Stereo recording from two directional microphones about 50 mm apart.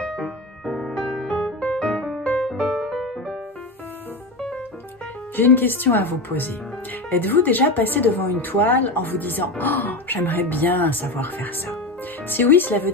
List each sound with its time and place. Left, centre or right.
0.0 s music: centre
2.6 s music: centre
5.3 s speech: left